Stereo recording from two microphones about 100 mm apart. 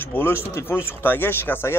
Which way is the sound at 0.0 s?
20° left (ahead or behind).